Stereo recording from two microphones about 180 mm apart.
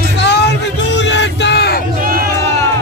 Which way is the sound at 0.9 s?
80° left.